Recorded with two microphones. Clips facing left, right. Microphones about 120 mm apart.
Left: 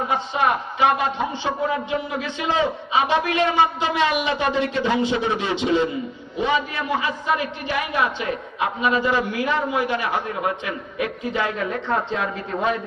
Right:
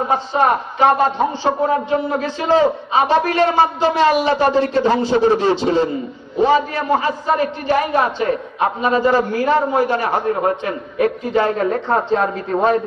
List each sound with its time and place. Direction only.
0.1 s a man's voice: 40° right (ahead or behind)